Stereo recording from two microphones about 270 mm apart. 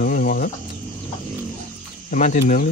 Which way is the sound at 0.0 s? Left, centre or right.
Left.